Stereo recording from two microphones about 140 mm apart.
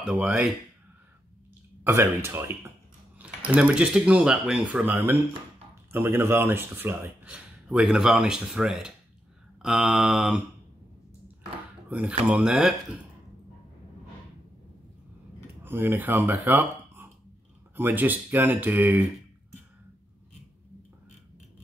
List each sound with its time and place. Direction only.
0.0 s mantra: 5° right (ahead or behind)
1.9 s speech: 15° right (ahead or behind)
9.6 s mantra: 5° right (ahead or behind)
11.9 s mantra: 10° right (ahead or behind)
15.6 s speech: 15° right (ahead or behind)